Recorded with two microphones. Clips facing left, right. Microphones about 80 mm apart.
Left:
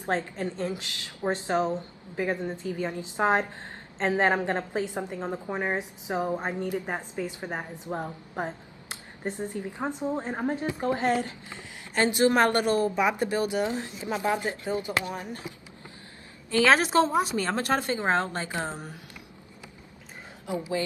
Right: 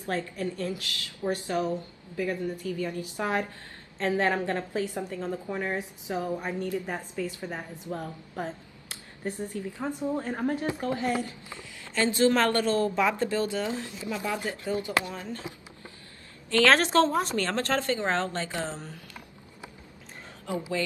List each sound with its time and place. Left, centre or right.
0.0 s a woman's voice: left
16.4 s a woman's voice: centre